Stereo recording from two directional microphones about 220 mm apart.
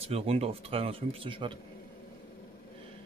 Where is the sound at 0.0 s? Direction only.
25° right (ahead or behind).